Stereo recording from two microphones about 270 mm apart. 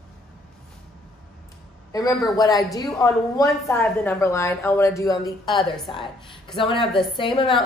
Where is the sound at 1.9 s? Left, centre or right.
Centre.